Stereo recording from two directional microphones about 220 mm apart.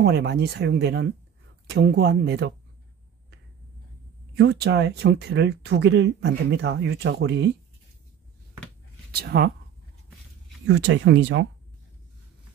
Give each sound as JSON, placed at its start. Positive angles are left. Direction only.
{"t": 0.0, "sound": "speech", "side_deg": -50}
{"t": 4.4, "sound": "speech", "side_deg": -50}
{"t": 9.1, "sound": "speech", "side_deg": -45}
{"t": 10.7, "sound": "speech", "side_deg": -55}